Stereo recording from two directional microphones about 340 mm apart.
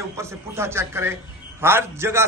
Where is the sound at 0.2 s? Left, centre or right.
Centre.